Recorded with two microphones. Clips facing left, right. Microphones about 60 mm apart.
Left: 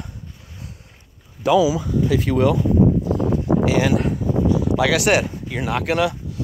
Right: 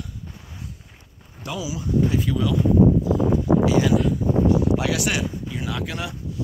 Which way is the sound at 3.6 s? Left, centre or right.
Left.